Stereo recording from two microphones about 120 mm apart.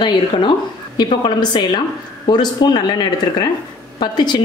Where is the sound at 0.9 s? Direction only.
40° left (ahead or behind).